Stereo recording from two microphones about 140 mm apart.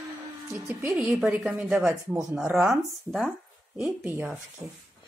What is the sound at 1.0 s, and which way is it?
Speech, 5° right (ahead or behind).